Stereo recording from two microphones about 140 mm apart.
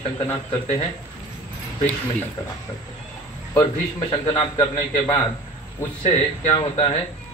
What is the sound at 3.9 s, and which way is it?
A man's voice, 40° left (ahead or behind).